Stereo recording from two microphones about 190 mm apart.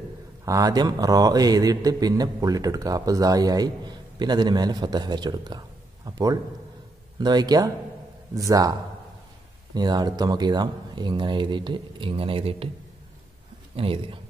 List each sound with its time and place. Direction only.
0.5 s a man's voice: 20° right (ahead or behind)
9.8 s a man's voice: 20° right (ahead or behind)
13.7 s a man's voice: 30° right (ahead or behind)